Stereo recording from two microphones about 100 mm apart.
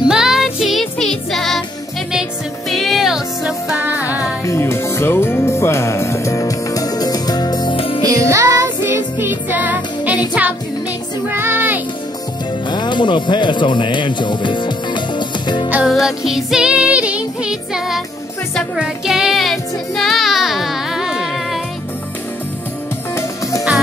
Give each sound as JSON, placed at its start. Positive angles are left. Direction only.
{"t": 0.1, "sound": "music", "side_deg": -5}
{"t": 2.7, "sound": "music", "side_deg": 0}
{"t": 3.8, "sound": "music", "side_deg": -15}
{"t": 4.2, "sound": "music", "side_deg": 30}
{"t": 7.7, "sound": "music", "side_deg": 65}
{"t": 8.0, "sound": "music", "side_deg": -35}
{"t": 11.2, "sound": "music", "side_deg": -20}
{"t": 12.6, "sound": "music", "side_deg": 50}
{"t": 15.9, "sound": "music", "side_deg": -5}
{"t": 18.8, "sound": "child singing", "side_deg": -5}